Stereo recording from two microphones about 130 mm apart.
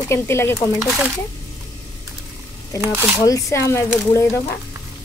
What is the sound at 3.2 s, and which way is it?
Speech, 25° left (ahead or behind).